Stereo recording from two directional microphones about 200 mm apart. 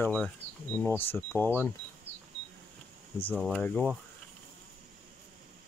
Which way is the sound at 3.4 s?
5° left (ahead or behind).